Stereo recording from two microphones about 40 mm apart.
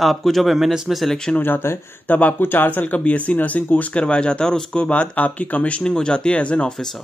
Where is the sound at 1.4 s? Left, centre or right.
Left.